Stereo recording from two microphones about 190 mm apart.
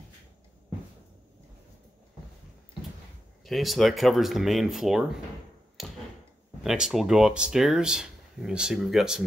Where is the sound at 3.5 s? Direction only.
Centre (ahead or behind).